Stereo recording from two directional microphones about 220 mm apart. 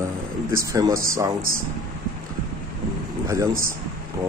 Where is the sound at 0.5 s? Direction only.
15° right (ahead or behind).